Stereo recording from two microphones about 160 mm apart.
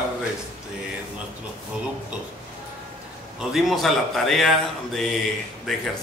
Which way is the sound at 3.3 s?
Centre (ahead or behind).